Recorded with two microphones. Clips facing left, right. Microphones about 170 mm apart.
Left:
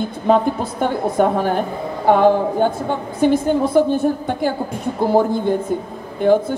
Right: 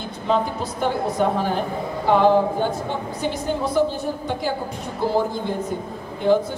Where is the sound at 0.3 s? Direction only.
50° left (ahead or behind).